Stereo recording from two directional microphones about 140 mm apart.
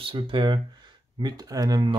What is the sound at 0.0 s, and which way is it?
Speech, 35° right (ahead or behind).